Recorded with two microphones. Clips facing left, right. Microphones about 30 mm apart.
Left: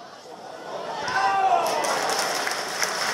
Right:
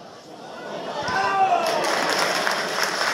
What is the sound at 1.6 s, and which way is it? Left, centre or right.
Applause, right.